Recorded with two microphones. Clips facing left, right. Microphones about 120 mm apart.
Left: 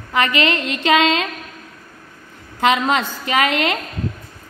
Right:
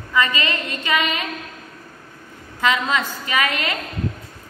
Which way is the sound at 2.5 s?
70° left (ahead or behind).